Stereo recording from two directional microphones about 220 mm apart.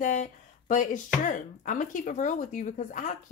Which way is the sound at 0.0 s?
35° left (ahead or behind).